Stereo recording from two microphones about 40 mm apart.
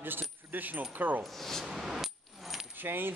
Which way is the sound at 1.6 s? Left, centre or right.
Centre.